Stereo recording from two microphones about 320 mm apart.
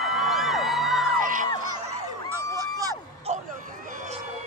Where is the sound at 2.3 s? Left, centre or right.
Centre.